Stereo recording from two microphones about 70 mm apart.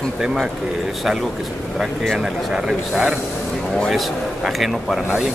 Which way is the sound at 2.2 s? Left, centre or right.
Centre.